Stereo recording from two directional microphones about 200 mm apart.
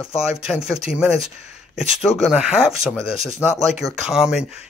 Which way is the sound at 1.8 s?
5° right (ahead or behind).